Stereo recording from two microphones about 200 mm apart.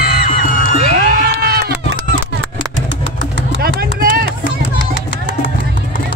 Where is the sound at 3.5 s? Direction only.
50° right (ahead or behind).